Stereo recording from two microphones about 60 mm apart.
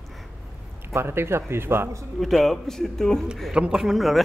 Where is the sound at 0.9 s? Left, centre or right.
Right.